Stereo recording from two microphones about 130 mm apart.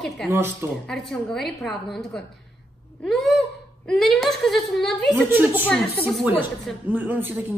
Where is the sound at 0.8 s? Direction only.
5° left (ahead or behind).